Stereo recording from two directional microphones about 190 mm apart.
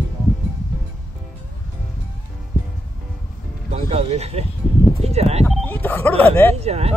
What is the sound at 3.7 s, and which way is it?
Speech, 30° right (ahead or behind).